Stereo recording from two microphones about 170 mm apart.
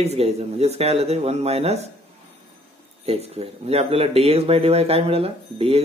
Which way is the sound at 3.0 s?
40° right (ahead or behind).